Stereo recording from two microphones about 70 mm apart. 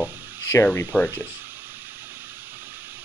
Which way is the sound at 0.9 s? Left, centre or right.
Left.